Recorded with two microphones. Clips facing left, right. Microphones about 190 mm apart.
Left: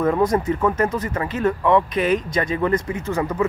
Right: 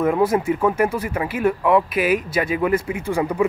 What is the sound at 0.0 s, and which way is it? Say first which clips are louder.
Speech: right 1 dB; 10° right (ahead or behind).